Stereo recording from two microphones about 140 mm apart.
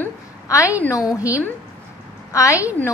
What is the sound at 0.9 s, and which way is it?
Speech, 10° right (ahead or behind).